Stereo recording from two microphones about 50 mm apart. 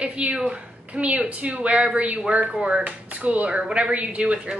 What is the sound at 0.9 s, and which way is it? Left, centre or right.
A woman's voice, right.